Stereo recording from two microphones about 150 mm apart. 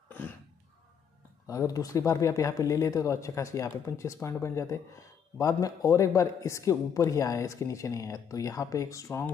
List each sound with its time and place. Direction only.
1.5 s a man's voice: 25° left (ahead or behind)